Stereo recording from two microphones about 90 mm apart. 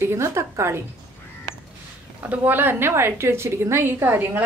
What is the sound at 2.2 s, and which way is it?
A woman's voice, 20° right (ahead or behind).